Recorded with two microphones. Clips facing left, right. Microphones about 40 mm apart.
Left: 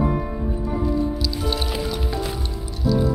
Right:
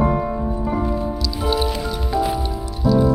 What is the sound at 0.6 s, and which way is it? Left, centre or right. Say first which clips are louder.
Music: left 2 dB; right.